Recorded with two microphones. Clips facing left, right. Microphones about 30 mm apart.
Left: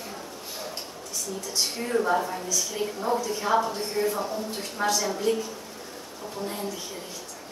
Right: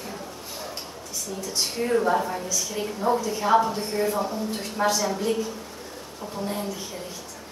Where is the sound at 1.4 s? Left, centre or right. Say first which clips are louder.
Right 4 dB; centre.